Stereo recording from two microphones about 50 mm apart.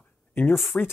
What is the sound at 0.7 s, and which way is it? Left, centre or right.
Speech, left.